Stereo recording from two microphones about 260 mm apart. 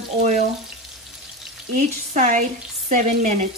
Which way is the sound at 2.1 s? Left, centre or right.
Right.